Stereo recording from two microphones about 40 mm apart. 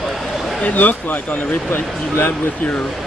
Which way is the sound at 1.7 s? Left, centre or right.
Left.